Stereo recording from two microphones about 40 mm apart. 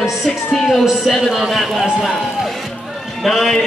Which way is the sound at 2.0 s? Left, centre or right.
Centre.